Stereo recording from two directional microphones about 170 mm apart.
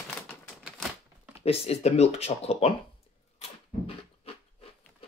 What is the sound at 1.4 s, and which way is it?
Speech, 35° left (ahead or behind).